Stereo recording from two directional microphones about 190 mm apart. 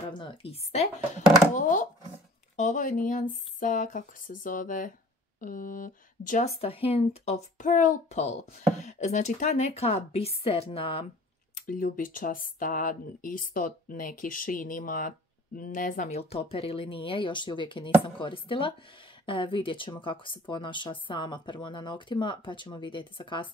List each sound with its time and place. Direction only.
0.2 s speech: 30° left (ahead or behind)
6.6 s speech: 30° left (ahead or behind)
11.5 s speech: 45° left (ahead or behind); by 23.5 s 25° left (ahead or behind)